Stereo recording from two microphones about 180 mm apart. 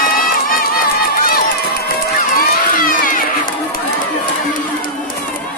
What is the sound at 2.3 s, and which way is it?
Run, 55° left (ahead or behind).